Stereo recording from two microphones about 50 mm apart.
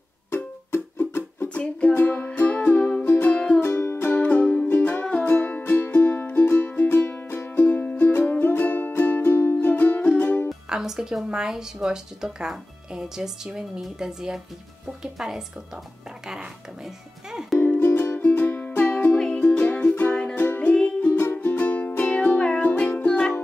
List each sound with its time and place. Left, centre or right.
0.3 s music: left
1.5 s music: left
2.0 s music: left
3.6 s music: left
4.1 s music: left
9.6 s music: left
10.7 s a woman's voice: centre
17.6 s music: left
19.1 s music: centre
21.3 s music: left
22.4 s music: centre
22.7 s music: left